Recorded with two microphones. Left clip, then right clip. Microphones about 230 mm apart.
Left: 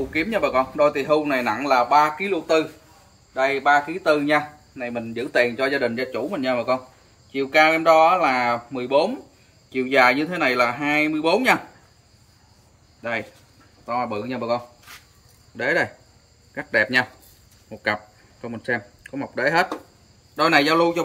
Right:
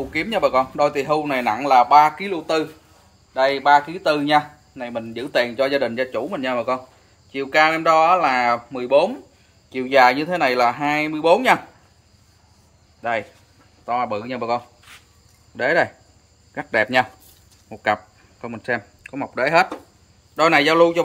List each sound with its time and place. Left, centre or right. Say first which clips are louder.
0.1 s speech: right 3 dB; right
13.8 s speech: right 3 dB; centre